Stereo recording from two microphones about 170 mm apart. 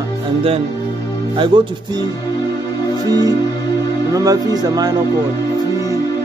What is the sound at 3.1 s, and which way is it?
Speech, 20° right (ahead or behind).